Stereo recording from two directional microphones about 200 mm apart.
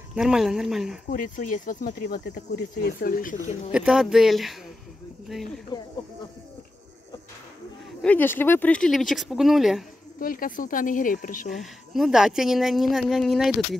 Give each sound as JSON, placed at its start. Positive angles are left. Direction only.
{"t": 0.1, "sound": "speech", "side_deg": -5}
{"t": 1.1, "sound": "cricket", "side_deg": 40}
{"t": 3.7, "sound": "speech", "side_deg": -5}
{"t": 8.0, "sound": "speech", "side_deg": 10}
{"t": 10.1, "sound": "cricket", "side_deg": 45}
{"t": 11.5, "sound": "speech", "side_deg": 0}